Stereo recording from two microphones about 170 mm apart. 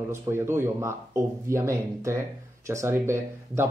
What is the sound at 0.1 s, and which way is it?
Speech, 15° right (ahead or behind).